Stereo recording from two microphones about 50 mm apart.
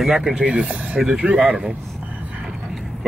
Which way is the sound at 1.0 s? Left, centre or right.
Centre.